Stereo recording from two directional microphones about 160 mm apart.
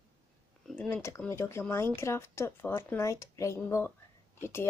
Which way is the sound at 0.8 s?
15° left (ahead or behind).